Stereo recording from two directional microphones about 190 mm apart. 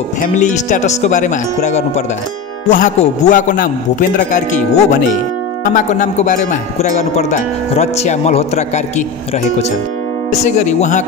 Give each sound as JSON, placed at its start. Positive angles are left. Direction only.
{"t": 0.2, "sound": "speech", "side_deg": 40}
{"t": 10.4, "sound": "speech", "side_deg": 40}